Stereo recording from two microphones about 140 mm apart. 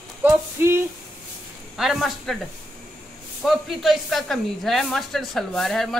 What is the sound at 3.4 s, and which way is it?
Speech, centre (ahead or behind).